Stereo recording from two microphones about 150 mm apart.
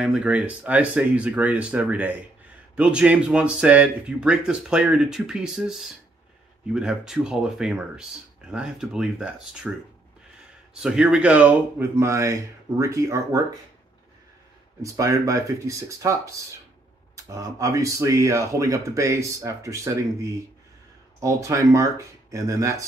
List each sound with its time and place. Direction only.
0.0 s speech: 10° right (ahead or behind)
10.7 s speech: 5° right (ahead or behind); by 13.4 s 20° right (ahead or behind)
14.8 s speech: 20° right (ahead or behind)